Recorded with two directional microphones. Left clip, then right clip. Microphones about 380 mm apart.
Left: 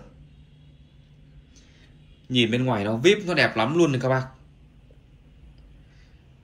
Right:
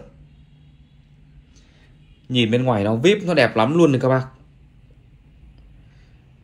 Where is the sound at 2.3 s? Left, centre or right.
Centre.